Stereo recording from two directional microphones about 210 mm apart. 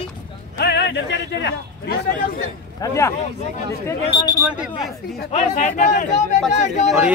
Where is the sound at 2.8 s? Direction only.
15° left (ahead or behind).